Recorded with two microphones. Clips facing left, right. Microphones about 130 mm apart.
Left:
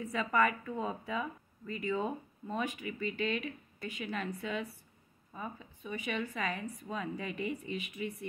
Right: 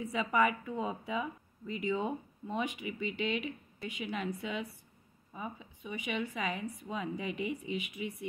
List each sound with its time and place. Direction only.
0.0 s a woman's voice: 15° right (ahead or behind)